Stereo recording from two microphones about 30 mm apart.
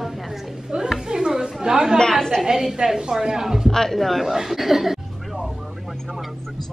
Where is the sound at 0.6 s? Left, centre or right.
Right.